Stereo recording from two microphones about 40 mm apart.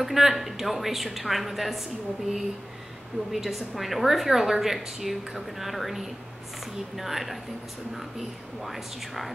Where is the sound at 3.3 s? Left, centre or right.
Centre.